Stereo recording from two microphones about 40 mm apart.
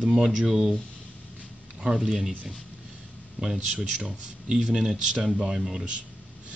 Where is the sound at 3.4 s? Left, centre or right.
Centre.